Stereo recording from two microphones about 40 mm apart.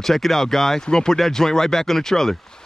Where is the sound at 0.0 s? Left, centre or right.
Centre.